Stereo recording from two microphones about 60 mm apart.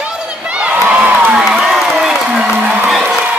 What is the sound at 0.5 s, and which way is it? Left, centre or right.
Crowd, right.